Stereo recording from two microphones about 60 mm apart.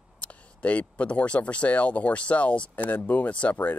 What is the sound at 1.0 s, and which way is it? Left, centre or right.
Speech, centre.